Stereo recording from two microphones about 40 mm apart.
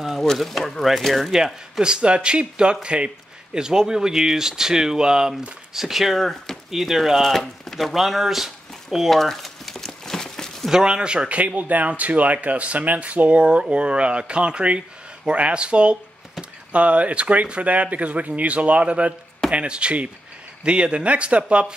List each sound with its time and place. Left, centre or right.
0.4 s speech: centre
1.3 s speech: centre
7.9 s speech: centre
9.2 s crumpling: centre
10.7 s speech: centre